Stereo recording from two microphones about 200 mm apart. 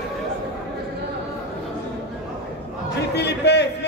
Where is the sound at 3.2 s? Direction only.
55° left (ahead or behind).